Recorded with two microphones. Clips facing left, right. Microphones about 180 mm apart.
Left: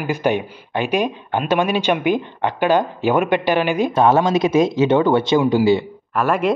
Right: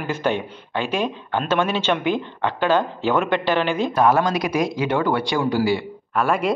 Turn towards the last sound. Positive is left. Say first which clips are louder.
# left 2 dB
turn(degrees=0)  # may be behind; listen again after turning